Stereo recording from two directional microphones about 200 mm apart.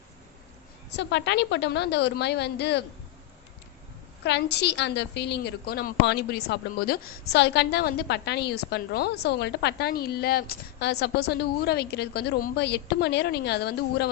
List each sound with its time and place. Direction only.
0.8 s a woman's voice: 60° left (ahead or behind)
4.2 s a woman's voice: 55° left (ahead or behind)